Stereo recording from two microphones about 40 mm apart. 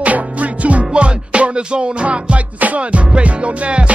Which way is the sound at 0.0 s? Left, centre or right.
Right.